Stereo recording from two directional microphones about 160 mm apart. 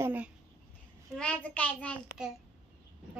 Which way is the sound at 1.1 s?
10° left (ahead or behind).